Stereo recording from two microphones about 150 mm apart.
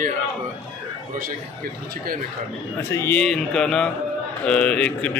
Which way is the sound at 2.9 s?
15° left (ahead or behind).